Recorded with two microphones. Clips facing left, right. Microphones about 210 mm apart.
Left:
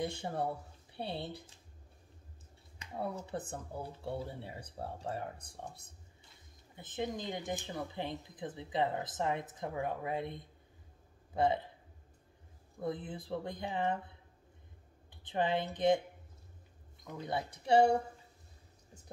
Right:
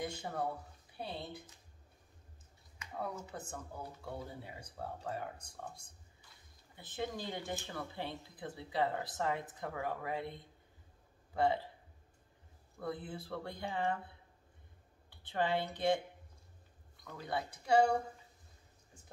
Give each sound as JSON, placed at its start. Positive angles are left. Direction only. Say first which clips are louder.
{"t": 0.0, "sound": "speech", "louder": "left 3 dB", "side_deg": 25}
{"t": 2.8, "sound": "speech", "louder": "left 3 dB", "side_deg": 30}
{"t": 6.8, "sound": "speech", "louder": "left 2 dB", "side_deg": 20}
{"t": 12.7, "sound": "speech", "louder": "left 3 dB", "side_deg": 20}
{"t": 15.0, "sound": "speech", "louder": "left 2 dB", "side_deg": 20}
{"t": 17.0, "sound": "speech", "louder": "left 2 dB", "side_deg": 20}